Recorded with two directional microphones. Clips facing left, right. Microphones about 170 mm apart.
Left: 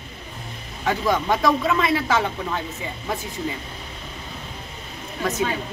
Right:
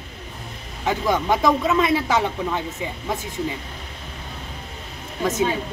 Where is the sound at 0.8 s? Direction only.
15° right (ahead or behind).